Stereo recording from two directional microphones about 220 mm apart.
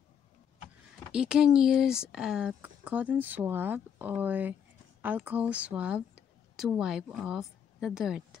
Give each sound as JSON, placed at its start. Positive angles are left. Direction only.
{"t": 1.1, "sound": "speech", "side_deg": -5}